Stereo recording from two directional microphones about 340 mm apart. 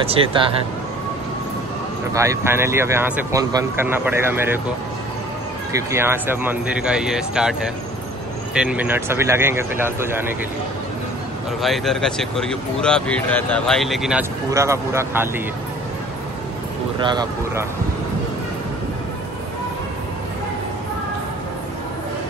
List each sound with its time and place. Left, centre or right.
0.0 s speech: centre
2.1 s speech: centre
5.7 s speech: centre
8.5 s speech: centre
11.6 s speech: centre
17.0 s speech: centre